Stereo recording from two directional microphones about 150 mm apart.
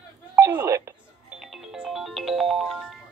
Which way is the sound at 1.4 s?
Centre (ahead or behind).